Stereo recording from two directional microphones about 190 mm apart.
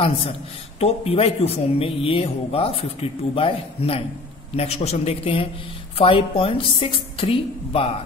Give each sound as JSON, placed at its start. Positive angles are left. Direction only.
{"t": 0.0, "sound": "a man's voice", "side_deg": 30}